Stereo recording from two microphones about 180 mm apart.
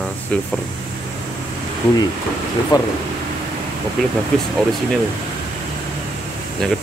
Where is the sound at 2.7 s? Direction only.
20° left (ahead or behind).